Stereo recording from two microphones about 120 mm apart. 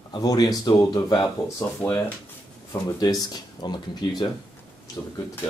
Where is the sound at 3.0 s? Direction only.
35° left (ahead or behind).